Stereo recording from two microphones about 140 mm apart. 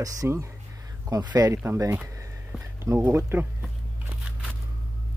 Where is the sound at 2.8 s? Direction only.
20° right (ahead or behind).